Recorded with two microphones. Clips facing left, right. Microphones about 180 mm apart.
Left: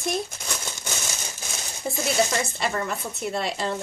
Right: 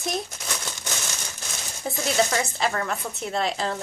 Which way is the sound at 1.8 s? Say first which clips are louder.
Even; centre (ahead or behind).